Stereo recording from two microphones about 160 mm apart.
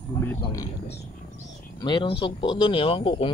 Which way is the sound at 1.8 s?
30° left (ahead or behind).